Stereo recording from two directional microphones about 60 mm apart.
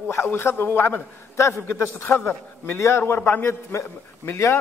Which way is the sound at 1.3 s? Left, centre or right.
Left.